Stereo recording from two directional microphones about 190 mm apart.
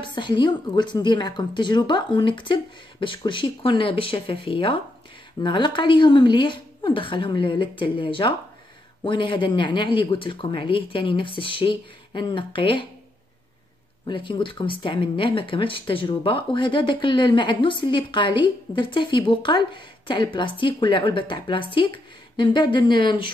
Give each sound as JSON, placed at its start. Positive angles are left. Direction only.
{"t": 0.0, "sound": "speech", "side_deg": 25}
{"t": 14.0, "sound": "speech", "side_deg": 25}